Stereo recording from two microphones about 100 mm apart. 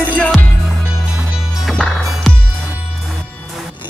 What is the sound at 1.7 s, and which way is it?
Music, 10° left (ahead or behind).